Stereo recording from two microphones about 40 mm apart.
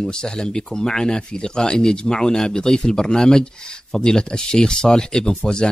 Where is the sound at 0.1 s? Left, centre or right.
Centre.